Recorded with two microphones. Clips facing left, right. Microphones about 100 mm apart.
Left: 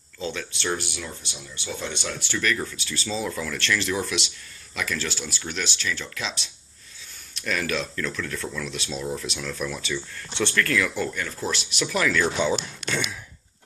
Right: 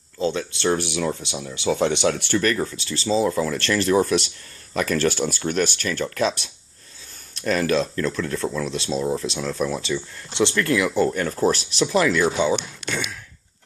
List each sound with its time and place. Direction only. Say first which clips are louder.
0.2 s speech: right 8 dB; 30° right (ahead or behind)
0.8 s speech: right 11 dB; 75° right (ahead or behind)
2.3 s speech: right 5 dB; 40° right (ahead or behind)
7.3 s speech: right 7 dB; 35° right (ahead or behind); by 11.1 s 20° right (ahead or behind)
11.1 s speech: right 9 dB; 45° right (ahead or behind)
11.8 s speech: right 4 dB; 20° right (ahead or behind)
12.8 s sigh: even; 5° right (ahead or behind)